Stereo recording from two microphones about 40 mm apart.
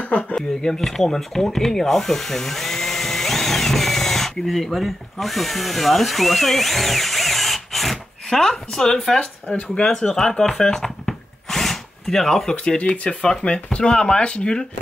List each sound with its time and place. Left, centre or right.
0.0 s speech: left
0.4 s wood: centre
9.5 s speech: left
9.8 s drill: centre
12.6 s speech: left